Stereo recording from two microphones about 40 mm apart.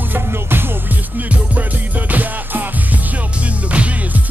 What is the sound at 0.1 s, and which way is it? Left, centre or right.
Music, right.